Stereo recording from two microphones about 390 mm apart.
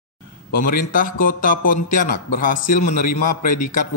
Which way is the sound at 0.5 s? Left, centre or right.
Left.